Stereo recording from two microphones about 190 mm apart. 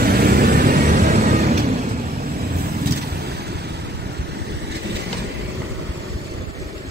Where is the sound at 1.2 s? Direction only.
35° right (ahead or behind).